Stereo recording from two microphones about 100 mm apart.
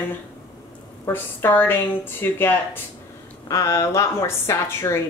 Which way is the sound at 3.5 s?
30° left (ahead or behind).